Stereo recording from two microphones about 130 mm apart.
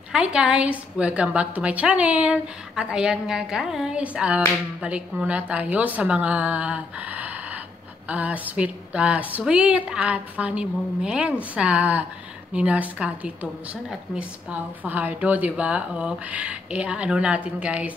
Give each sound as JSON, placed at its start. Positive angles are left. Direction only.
{"t": 0.1, "sound": "a woman's voice", "side_deg": -5}